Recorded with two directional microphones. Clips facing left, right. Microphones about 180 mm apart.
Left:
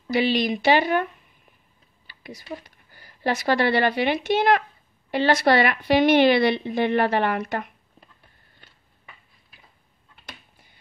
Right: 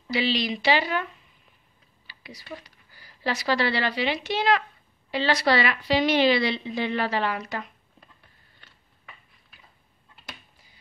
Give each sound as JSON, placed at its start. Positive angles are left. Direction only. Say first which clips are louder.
{"t": 0.1, "sound": "a woman's voice", "louder": "left 4 dB", "side_deg": 50}